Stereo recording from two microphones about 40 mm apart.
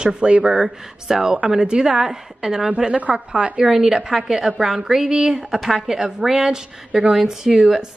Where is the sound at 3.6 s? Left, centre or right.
Centre.